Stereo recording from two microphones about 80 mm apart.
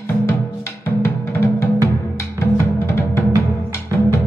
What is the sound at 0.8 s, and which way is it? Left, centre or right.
Music, left.